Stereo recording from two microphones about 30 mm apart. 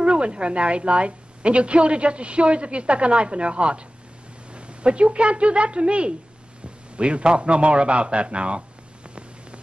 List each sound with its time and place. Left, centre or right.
0.0 s a woman's voice: right